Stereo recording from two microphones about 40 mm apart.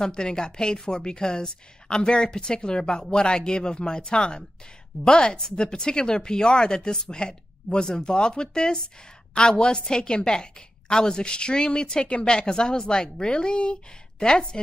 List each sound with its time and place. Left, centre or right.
0.0 s a woman's voice: centre